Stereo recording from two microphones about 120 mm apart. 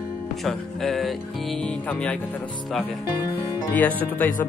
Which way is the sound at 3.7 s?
15° left (ahead or behind).